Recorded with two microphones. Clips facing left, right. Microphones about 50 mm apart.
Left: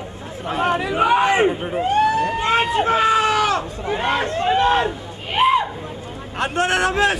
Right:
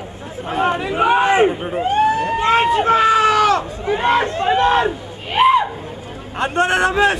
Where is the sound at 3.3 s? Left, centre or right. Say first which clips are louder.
Right 4 dB; centre.